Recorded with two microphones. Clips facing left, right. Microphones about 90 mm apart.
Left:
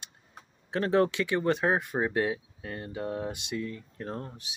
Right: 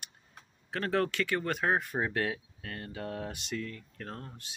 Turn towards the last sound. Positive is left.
turn(degrees=20)  # may be behind; listen again after turning